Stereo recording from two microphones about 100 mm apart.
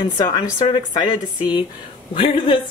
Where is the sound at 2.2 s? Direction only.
55° left (ahead or behind).